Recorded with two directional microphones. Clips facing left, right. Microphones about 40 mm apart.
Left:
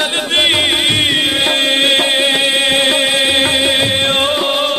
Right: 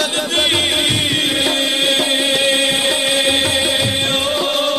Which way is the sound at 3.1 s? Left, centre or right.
Left.